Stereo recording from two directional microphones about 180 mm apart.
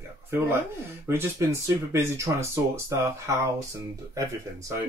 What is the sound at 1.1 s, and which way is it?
Speech, 15° right (ahead or behind).